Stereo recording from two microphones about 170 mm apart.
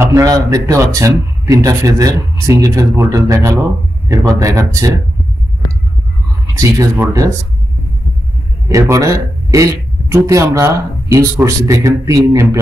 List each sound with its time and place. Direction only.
0.0 s speech: 20° right (ahead or behind)
6.4 s speech: 20° right (ahead or behind)
8.6 s speech: 20° right (ahead or behind)